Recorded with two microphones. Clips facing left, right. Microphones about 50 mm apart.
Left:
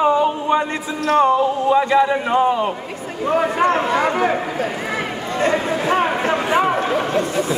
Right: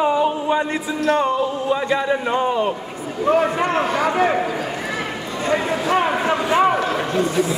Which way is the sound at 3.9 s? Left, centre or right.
Left.